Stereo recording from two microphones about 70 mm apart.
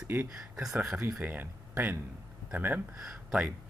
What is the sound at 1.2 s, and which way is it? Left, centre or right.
Speech, right.